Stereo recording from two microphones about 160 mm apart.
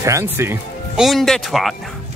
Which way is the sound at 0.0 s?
20° right (ahead or behind).